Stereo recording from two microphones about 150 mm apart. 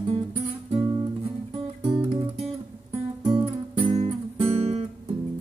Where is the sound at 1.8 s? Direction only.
30° right (ahead or behind).